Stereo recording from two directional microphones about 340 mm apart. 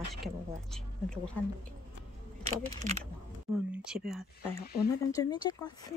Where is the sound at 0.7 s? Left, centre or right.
Centre.